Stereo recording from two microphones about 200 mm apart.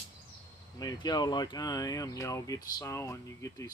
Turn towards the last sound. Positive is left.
turn(degrees=15)  # may be behind; listen again after turning